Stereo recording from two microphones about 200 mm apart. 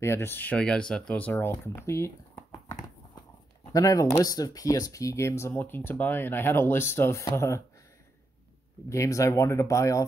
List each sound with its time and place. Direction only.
0.0 s speech: 10° left (ahead or behind)
3.7 s speech: 15° left (ahead or behind)
8.8 s speech: 15° left (ahead or behind)